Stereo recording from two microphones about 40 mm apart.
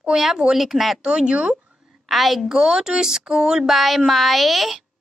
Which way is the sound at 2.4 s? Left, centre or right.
Centre.